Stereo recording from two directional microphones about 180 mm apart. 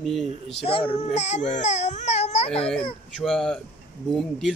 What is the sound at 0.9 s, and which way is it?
Speech, 35° left (ahead or behind).